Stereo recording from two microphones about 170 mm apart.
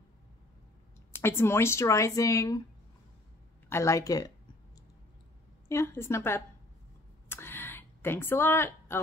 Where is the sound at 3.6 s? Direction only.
15° left (ahead or behind).